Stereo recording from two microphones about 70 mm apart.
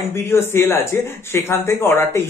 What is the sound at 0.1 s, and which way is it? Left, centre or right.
Speech, left.